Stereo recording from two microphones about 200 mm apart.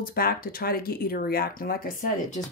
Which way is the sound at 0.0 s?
50° left (ahead or behind).